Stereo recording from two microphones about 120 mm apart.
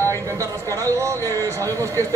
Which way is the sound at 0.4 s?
25° right (ahead or behind).